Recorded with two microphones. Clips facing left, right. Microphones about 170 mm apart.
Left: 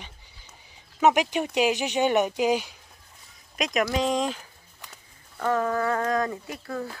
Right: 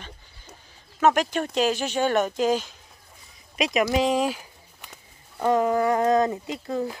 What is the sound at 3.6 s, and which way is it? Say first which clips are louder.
Speech: right 3 dB; centre (ahead or behind).